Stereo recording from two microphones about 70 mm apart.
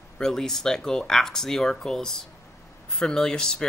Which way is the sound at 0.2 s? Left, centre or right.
Centre.